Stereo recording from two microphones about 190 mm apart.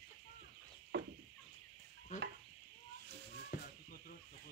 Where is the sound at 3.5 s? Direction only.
50° left (ahead or behind).